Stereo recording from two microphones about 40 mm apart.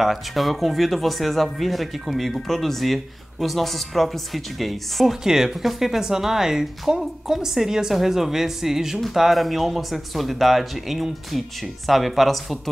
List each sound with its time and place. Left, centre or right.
0.0 s speech: centre
5.2 s speech: centre